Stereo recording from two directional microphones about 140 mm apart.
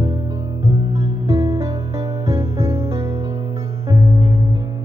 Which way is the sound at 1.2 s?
25° right (ahead or behind).